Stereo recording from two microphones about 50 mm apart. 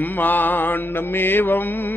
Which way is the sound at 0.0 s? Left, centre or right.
Left.